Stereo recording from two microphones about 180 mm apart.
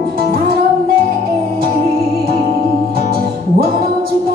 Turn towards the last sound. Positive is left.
turn(degrees=-55)  # may be behind; listen again after turning